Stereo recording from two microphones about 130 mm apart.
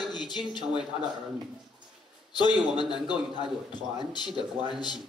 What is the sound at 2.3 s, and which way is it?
A man's voice, 35° left (ahead or behind).